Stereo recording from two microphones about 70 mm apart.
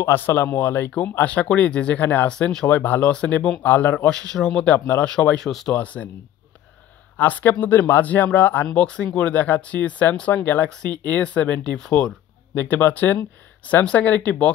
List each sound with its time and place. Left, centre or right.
0.0 s speech: left
1.2 s speech: centre
2.7 s speech: left
4.0 s speech: centre
4.7 s speech: left
5.0 s speech: centre
5.5 s speech: centre
5.8 s speech: left
7.2 s speech: left
8.7 s speech: centre
12.5 s speech: left